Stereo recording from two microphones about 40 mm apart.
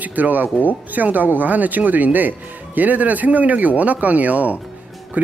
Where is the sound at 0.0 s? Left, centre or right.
Right.